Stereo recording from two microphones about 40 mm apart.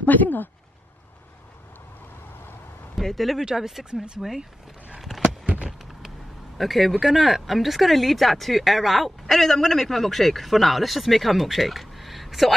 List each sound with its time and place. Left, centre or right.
0.0 s speech: left
3.0 s a man's voice: centre
3.4 s speech: centre
3.9 s speech: right
4.2 s speech: centre
6.6 s a man's voice: centre
7.0 s a man's voice: centre